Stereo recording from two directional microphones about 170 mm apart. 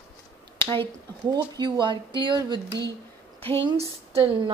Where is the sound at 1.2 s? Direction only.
25° right (ahead or behind).